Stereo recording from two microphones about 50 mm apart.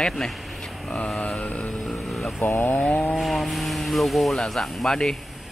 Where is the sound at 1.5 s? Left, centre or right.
Left.